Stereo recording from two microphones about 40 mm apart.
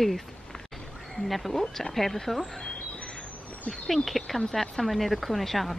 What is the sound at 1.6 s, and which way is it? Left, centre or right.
Speech, centre.